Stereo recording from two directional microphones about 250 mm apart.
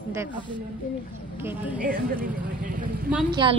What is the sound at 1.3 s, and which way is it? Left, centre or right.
Speech, centre.